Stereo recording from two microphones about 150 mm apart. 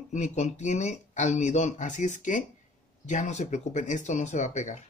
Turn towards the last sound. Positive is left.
turn(degrees=50)  # may be behind; listen again after turning